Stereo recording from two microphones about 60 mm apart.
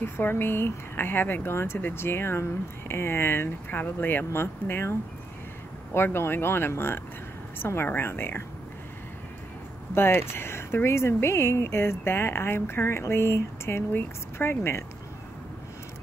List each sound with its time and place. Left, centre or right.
0.0 s speech: left
3.8 s speech: left
5.9 s speech: left
9.9 s speech: left